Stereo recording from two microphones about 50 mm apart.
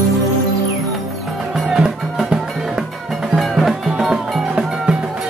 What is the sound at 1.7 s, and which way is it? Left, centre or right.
Music, centre.